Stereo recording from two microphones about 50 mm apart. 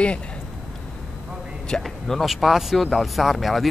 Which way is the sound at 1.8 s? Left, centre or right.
Centre.